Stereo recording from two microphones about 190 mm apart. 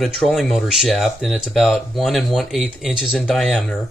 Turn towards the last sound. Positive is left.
turn(degrees=0)  # may be behind; listen again after turning